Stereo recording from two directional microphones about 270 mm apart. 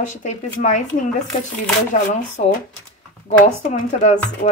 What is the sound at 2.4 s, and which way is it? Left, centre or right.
Speech, left.